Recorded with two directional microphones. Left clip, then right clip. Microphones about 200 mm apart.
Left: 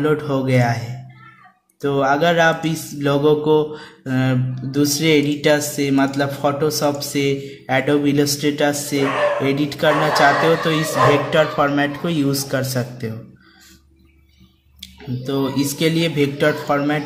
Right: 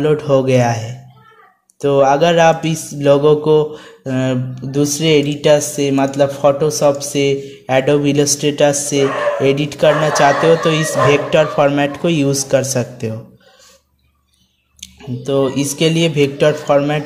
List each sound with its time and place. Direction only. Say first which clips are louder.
0.0 s a man's voice: right 6 dB; 25° right (ahead or behind)
15.2 s a man's voice: right 5 dB; 20° right (ahead or behind)